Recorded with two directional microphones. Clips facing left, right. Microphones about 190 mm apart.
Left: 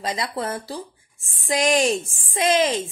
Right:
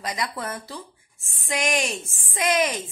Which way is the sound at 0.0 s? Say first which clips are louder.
Left 3 dB; 25° left (ahead or behind).